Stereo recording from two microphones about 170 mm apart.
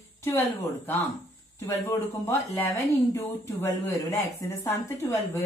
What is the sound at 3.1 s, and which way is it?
Speech, 15° left (ahead or behind).